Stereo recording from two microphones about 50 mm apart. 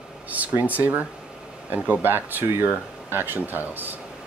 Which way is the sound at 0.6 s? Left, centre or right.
Right.